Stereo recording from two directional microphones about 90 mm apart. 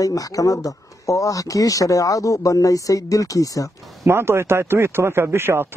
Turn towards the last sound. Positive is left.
turn(degrees=-25)  # may be behind; listen again after turning